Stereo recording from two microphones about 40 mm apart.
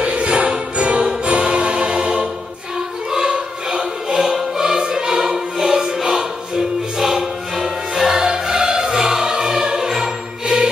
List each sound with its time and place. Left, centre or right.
0.0 s music: right
3.1 s music: centre